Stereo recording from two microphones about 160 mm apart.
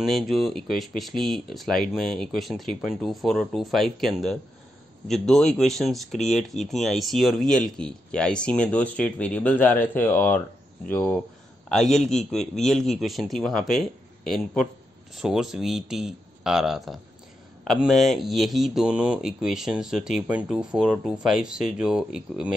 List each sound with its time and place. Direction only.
0.0 s speech: centre (ahead or behind)